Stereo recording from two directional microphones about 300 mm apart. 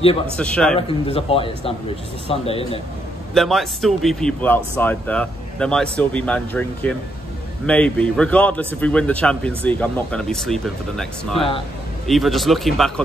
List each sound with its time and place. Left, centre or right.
0.4 s speech: centre
0.7 s a man's voice: centre
3.3 s speech: centre